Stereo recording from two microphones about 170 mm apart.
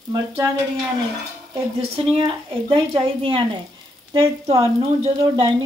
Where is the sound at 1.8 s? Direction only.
35° right (ahead or behind).